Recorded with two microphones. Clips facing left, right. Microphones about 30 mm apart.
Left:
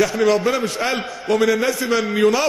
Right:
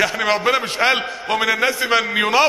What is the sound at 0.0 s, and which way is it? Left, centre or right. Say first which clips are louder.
A man's voice: left 1 dB; right.